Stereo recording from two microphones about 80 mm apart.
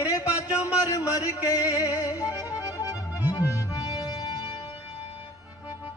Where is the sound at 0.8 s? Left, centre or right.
Left.